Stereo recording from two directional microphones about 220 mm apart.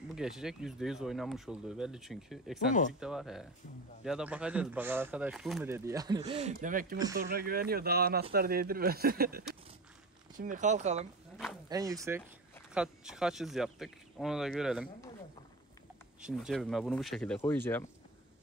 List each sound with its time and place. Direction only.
0.1 s speech: centre (ahead or behind)
6.2 s speech: 30° right (ahead or behind)
7.0 s speech: 15° right (ahead or behind)
7.2 s speech: 45° right (ahead or behind)
10.4 s speech: 35° right (ahead or behind)
11.7 s speech: 15° right (ahead or behind)
12.7 s speech: 5° right (ahead or behind)
16.2 s speech: 5° right (ahead or behind)